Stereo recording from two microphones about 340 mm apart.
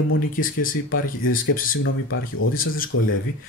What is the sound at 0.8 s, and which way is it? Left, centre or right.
Speech, left.